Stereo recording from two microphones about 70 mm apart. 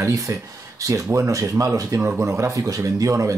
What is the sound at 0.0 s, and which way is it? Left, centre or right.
Speech, right.